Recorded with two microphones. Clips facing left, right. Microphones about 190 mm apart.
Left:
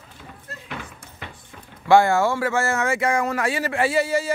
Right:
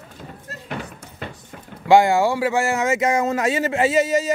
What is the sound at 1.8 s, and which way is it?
Speech, 15° right (ahead or behind).